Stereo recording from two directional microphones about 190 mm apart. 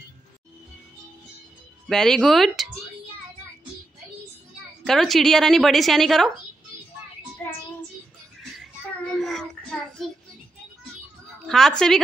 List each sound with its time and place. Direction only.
1.9 s a woman's voice: centre (ahead or behind)
4.8 s a woman's voice: centre (ahead or behind)
9.2 s child singing: 5° left (ahead or behind)
11.4 s a woman's voice: centre (ahead or behind)